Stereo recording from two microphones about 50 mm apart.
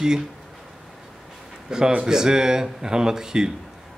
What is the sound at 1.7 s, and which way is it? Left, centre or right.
Speech, centre.